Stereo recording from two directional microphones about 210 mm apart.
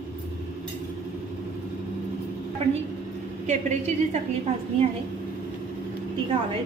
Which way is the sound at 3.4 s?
35° right (ahead or behind).